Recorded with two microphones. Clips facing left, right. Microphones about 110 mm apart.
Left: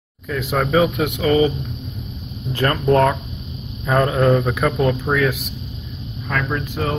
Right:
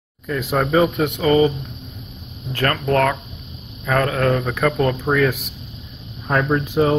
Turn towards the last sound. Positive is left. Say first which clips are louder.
# right 6 dB
turn(degrees=-30)  # may be behind; listen again after turning